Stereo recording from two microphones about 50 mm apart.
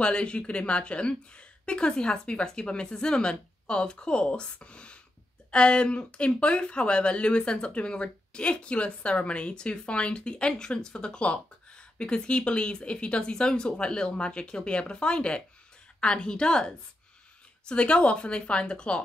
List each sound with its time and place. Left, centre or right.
0.0 s a woman's voice: centre